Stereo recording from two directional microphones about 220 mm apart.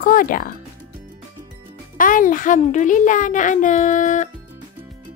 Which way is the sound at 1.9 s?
35° left (ahead or behind).